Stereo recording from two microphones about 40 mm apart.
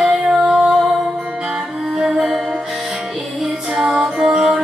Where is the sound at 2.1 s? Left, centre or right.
Centre.